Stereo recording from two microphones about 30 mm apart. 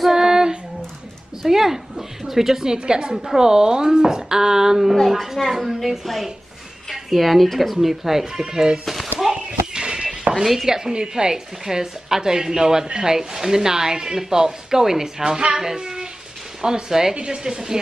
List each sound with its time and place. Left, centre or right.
0.1 s female singing: centre
1.4 s a sound: centre
2.8 s speech: right
5.0 s a woman's voice: centre
6.9 s speech: centre
8.8 s a sound: centre
9.3 s a sound: right
10.4 s speech: centre
10.7 s speech: right